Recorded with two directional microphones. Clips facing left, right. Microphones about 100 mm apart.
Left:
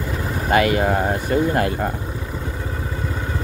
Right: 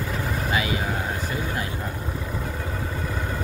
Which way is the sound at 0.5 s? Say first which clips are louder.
Left 11 dB; 55° left (ahead or behind).